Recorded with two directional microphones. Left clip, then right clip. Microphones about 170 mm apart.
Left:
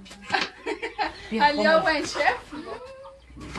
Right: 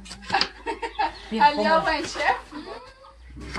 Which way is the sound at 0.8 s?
65° left (ahead or behind).